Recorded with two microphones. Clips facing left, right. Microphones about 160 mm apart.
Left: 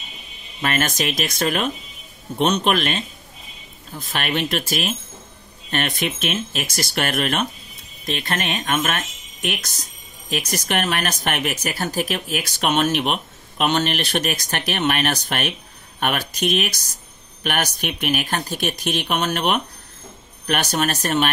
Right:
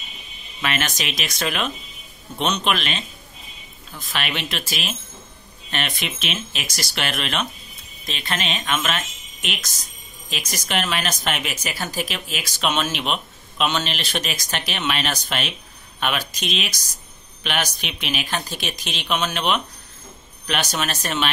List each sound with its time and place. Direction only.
0.6 s speech: 45° left (ahead or behind)
4.1 s speech: 50° left (ahead or behind)